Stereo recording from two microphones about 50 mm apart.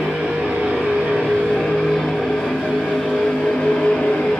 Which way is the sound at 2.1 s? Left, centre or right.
Centre.